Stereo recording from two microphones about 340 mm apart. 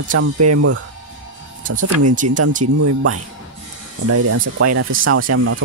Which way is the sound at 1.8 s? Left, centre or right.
Right.